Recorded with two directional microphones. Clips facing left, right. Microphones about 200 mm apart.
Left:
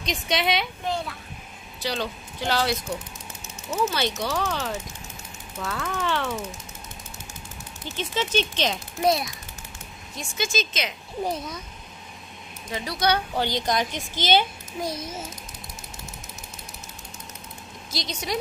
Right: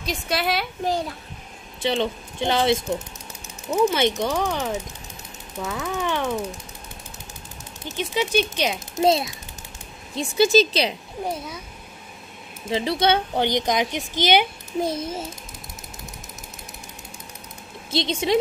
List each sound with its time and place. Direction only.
0.0 s a woman's voice: 5° right (ahead or behind)
0.8 s speech: 35° right (ahead or behind)
1.8 s a child's voice: 25° right (ahead or behind)
7.9 s speech: 15° right (ahead or behind)
9.0 s a child's voice: 25° right (ahead or behind)
10.3 s speech: 35° right (ahead or behind)
12.6 s a child's voice: 25° right (ahead or behind)
14.8 s a child's voice: 30° right (ahead or behind)
17.9 s a child's voice: 25° right (ahead or behind)